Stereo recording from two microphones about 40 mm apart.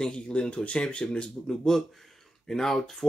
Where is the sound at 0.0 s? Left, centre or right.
Left.